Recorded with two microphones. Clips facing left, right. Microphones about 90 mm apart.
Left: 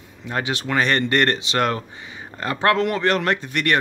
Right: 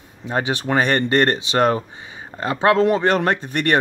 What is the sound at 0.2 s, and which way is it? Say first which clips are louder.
Speech: right 3 dB; 25° right (ahead or behind).